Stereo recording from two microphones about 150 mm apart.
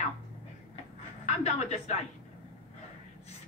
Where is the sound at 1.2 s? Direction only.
50° left (ahead or behind).